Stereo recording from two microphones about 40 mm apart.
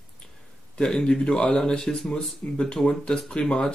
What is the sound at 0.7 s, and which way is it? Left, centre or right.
Speech, centre.